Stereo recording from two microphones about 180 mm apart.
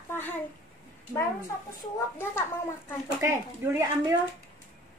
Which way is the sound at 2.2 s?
10° left (ahead or behind).